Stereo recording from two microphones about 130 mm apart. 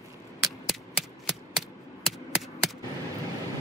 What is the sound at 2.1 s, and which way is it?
Chop, centre (ahead or behind).